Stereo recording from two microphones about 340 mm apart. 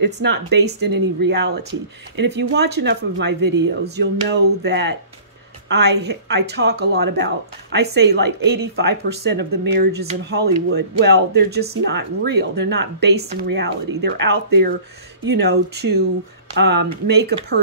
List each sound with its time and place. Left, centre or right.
0.0 s speech: right